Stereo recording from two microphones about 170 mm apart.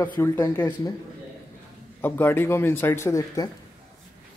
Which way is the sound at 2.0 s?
10° left (ahead or behind).